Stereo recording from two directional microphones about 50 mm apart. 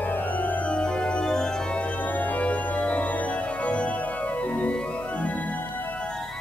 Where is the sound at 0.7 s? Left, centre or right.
Centre.